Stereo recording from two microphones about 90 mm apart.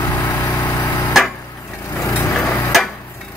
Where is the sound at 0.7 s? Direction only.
40° left (ahead or behind).